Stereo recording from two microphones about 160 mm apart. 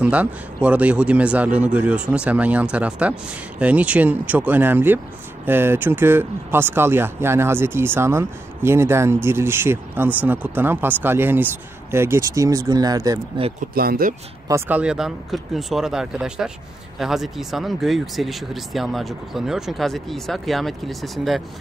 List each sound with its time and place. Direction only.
0.0 s speech: 10° right (ahead or behind)
13.7 s speech: 70° right (ahead or behind)
14.5 s speech: 10° right (ahead or behind)